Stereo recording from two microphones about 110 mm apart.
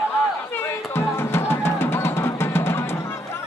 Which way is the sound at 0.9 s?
20° left (ahead or behind).